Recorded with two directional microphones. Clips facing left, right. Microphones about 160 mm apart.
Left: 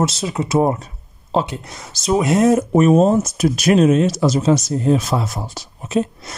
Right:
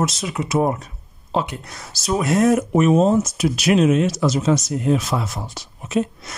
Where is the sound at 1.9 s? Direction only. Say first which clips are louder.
Left 3 dB; 20° left (ahead or behind).